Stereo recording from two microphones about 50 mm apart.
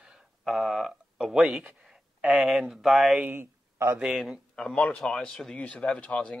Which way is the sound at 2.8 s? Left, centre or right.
Centre.